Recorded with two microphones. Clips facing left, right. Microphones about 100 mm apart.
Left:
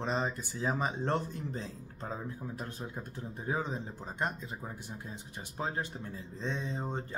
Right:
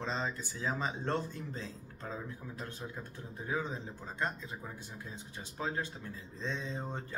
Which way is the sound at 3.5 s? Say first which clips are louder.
Left 2 dB; 35° left (ahead or behind).